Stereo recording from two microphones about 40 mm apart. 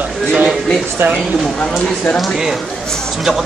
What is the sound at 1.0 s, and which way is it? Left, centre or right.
Speech, right.